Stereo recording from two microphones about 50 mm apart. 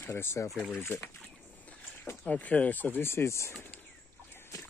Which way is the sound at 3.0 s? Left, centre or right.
Left.